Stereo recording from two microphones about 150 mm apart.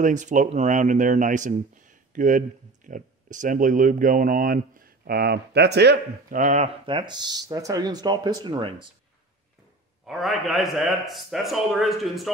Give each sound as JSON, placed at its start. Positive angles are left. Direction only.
{"t": 0.0, "sound": "speech", "side_deg": -55}
{"t": 6.9, "sound": "speech", "side_deg": -30}
{"t": 10.0, "sound": "a man's voice", "side_deg": 0}